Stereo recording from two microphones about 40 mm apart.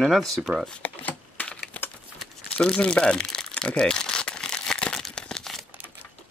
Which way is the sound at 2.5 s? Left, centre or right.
Centre.